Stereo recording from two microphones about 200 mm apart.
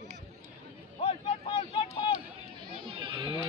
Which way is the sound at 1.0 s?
30° left (ahead or behind).